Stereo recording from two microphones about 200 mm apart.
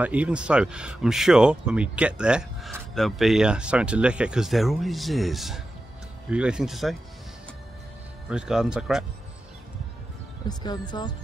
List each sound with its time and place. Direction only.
0.0 s speech: 5° right (ahead or behind)
8.3 s speech: 5° right (ahead or behind)
10.5 s speech: 20° left (ahead or behind)